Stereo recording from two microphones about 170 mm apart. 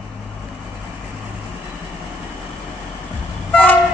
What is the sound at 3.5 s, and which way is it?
Vehicle, 10° left (ahead or behind).